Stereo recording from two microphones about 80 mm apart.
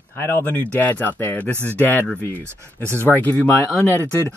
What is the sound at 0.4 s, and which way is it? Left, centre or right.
Speech, left.